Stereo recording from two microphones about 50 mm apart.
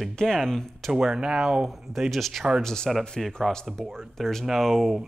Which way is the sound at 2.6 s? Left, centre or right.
Centre.